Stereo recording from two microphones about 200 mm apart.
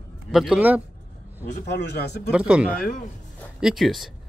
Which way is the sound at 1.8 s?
55° left (ahead or behind).